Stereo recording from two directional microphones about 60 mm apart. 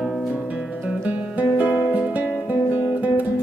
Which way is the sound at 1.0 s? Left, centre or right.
Right.